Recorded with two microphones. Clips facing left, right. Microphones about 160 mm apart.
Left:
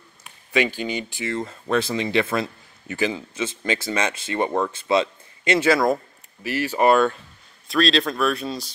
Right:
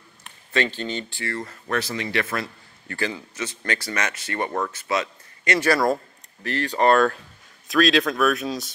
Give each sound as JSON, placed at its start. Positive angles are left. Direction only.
{"t": 0.5, "sound": "speech", "side_deg": 10}
{"t": 6.4, "sound": "speech", "side_deg": 5}